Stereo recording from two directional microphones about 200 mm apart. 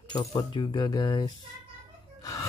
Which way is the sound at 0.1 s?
20° left (ahead or behind).